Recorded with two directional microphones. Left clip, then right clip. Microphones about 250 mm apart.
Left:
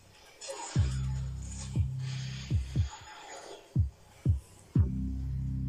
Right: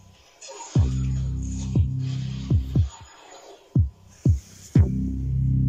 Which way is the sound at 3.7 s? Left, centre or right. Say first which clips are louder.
Right 10 dB; right.